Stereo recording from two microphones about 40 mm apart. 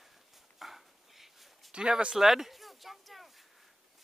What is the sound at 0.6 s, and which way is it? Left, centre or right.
Dog, centre.